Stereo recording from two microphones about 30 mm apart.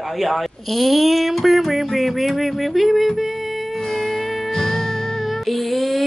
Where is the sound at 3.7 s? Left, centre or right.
Centre.